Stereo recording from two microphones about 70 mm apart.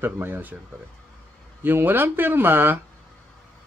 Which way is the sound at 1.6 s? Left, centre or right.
Right.